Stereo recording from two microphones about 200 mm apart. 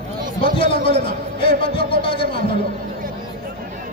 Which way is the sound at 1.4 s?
25° left (ahead or behind).